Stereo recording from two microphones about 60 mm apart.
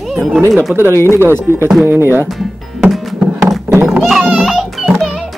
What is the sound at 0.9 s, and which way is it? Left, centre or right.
Speech, left.